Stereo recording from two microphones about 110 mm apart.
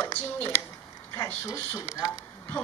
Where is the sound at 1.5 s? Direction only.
25° left (ahead or behind).